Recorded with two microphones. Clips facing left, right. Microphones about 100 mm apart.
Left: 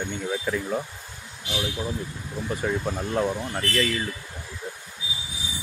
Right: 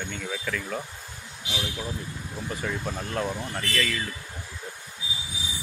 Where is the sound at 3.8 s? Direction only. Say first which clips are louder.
Left 3 dB; 20° left (ahead or behind).